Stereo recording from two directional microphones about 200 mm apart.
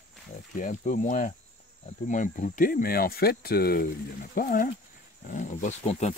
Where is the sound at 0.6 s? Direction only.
40° left (ahead or behind).